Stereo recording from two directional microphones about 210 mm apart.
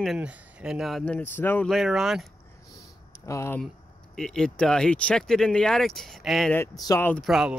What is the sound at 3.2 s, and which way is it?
Speech, 15° left (ahead or behind).